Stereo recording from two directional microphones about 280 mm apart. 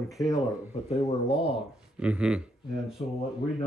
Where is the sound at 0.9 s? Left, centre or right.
Left.